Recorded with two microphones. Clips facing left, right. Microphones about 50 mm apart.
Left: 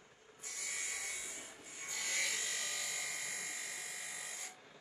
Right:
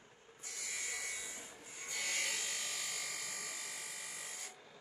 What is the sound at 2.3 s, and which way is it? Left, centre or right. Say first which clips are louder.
Electric shaver: left 1 dB; left.